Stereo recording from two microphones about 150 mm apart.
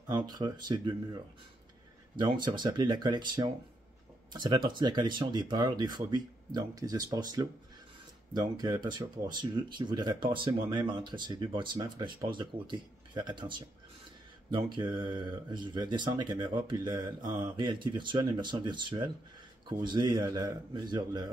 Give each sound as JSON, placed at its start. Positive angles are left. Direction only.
{"t": 0.0, "sound": "speech", "side_deg": -25}